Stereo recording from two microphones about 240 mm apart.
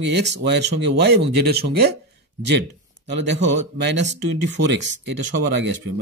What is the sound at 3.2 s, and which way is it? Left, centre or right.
Speech, right.